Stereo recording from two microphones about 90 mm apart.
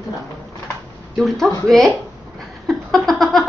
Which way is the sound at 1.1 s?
5° left (ahead or behind).